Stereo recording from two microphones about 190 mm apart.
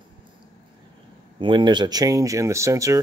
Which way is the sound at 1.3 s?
25° right (ahead or behind).